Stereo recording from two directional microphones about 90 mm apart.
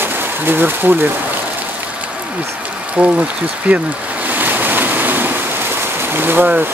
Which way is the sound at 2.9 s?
15° right (ahead or behind).